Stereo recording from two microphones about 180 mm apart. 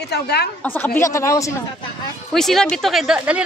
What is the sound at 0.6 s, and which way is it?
Speech, 10° left (ahead or behind).